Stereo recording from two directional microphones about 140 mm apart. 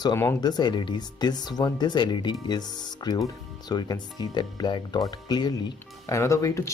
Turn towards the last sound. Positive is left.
turn(degrees=20)  # may be behind; listen again after turning